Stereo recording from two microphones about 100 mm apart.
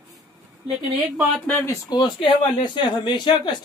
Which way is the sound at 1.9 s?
50° left (ahead or behind).